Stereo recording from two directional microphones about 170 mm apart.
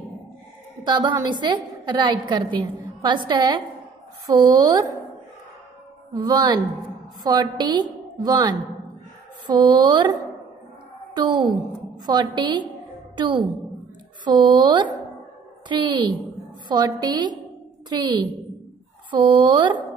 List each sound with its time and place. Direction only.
0.8 s a woman's voice: 25° right (ahead or behind)
6.2 s a woman's voice: 25° right (ahead or behind)
11.1 s a woman's voice: 25° right (ahead or behind)